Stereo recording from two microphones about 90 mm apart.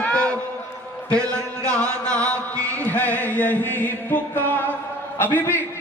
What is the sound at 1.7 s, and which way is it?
Music, 15° left (ahead or behind).